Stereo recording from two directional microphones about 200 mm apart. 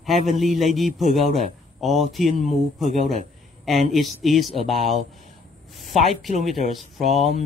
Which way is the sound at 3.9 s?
Centre (ahead or behind).